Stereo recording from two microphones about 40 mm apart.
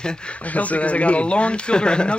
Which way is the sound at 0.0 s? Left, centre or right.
Left.